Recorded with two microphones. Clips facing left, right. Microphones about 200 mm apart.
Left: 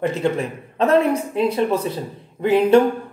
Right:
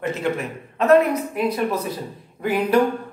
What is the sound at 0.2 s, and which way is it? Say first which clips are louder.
Speech: left 3 dB; 30° left (ahead or behind).